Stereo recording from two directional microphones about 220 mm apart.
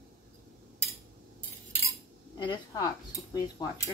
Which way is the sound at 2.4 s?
20° left (ahead or behind).